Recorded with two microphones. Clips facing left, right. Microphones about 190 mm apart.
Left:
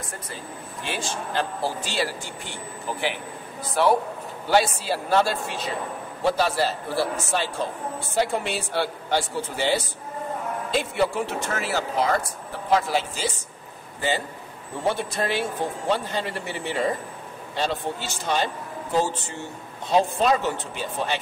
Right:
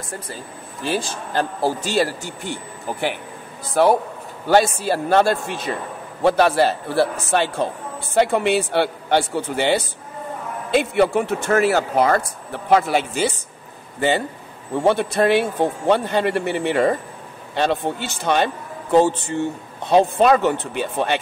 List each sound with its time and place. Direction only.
0.8 s a man's voice: 40° right (ahead or behind); by 21.2 s 60° right (ahead or behind)